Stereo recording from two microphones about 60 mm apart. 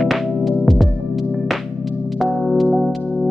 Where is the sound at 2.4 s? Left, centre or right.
Centre.